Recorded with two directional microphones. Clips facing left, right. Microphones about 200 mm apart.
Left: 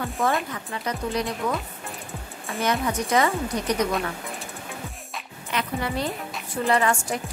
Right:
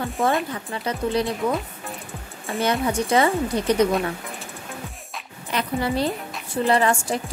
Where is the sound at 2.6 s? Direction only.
30° right (ahead or behind).